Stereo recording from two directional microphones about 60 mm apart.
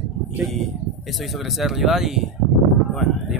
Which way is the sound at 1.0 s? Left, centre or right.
Centre.